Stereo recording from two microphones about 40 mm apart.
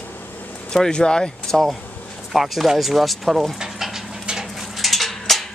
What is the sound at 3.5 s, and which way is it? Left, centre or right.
Dog, centre.